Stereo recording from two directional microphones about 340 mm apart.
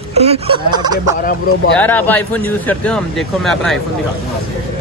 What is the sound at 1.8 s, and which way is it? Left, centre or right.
Speech, centre.